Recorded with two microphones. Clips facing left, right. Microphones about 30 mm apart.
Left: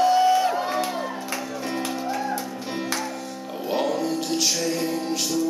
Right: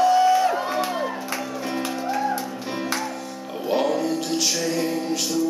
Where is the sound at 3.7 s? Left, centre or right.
Centre.